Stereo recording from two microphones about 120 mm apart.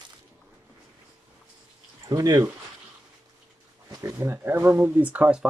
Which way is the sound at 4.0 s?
25° right (ahead or behind).